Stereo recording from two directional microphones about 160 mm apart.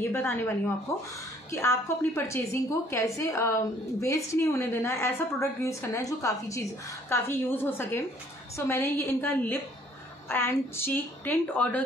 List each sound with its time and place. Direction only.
0.1 s a woman's voice: 15° left (ahead or behind)